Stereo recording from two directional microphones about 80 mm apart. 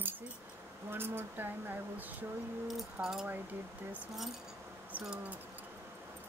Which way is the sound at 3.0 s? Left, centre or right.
Centre.